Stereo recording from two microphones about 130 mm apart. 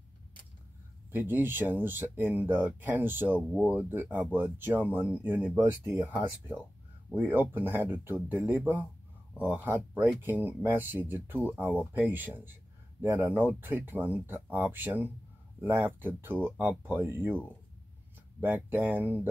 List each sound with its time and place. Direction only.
1.1 s speech: 15° right (ahead or behind)
18.4 s speech: 15° right (ahead or behind)